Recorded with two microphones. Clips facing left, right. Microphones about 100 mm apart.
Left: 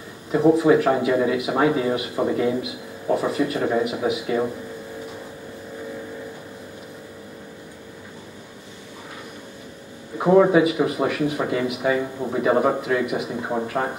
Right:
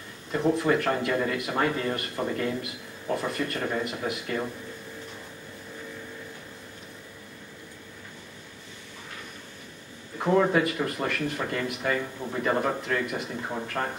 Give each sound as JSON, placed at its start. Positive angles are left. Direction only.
{"t": 0.3, "sound": "a man's voice", "side_deg": 10}
{"t": 10.1, "sound": "a man's voice", "side_deg": 15}